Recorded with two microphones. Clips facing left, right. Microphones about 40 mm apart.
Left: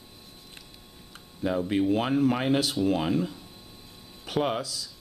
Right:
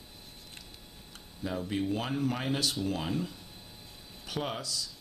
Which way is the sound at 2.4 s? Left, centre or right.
Left.